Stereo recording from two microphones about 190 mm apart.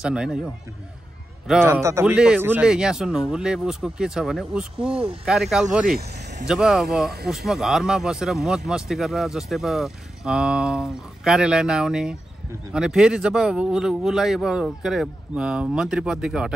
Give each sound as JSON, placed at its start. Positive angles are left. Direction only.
{"t": 0.0, "sound": "speech", "side_deg": -5}
{"t": 1.6, "sound": "speech", "side_deg": -15}
{"t": 5.9, "sound": "speech", "side_deg": -60}
{"t": 6.4, "sound": "speech", "side_deg": -5}